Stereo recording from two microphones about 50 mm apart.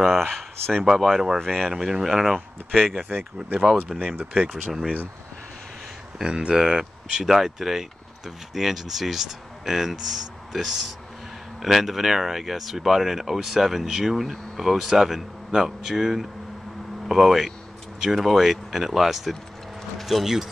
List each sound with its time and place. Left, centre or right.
0.0 s speech: centre
0.8 s speech: centre
1.7 s speech: centre
3.1 s speech: right
3.9 s speech: centre
6.1 s speech: centre